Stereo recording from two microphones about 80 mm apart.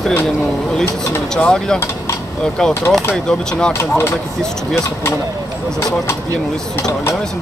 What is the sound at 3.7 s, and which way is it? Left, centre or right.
Speech, left.